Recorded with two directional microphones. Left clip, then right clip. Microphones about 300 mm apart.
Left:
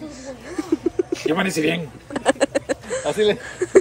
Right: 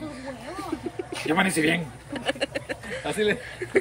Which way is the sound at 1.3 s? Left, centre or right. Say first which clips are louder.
Even; centre.